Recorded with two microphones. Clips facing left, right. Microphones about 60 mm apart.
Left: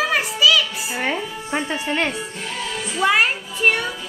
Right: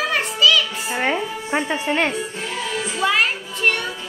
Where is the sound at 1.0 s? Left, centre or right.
Centre.